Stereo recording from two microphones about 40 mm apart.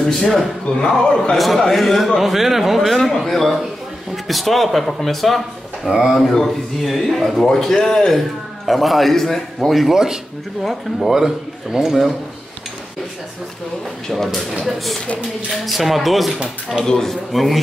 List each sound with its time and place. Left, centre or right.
0.0 s speech: centre
1.3 s a man's voice: centre
5.9 s a man's voice: centre
6.3 s a man's voice: centre
8.6 s a man's voice: centre
11.1 s a man's voice: centre
14.1 s a man's voice: centre
16.8 s speech: centre
17.1 s a man's voice: centre